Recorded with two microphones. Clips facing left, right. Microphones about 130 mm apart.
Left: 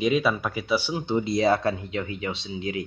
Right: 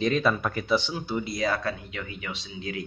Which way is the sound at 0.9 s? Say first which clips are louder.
Left 6 dB; 25° left (ahead or behind).